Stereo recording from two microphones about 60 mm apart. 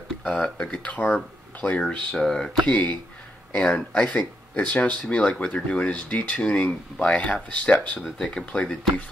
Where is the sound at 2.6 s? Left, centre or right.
Left.